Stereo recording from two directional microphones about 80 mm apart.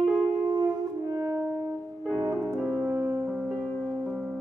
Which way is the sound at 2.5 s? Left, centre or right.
Right.